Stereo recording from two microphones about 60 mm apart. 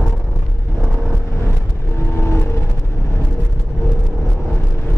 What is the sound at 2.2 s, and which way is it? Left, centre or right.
Vehicle, left.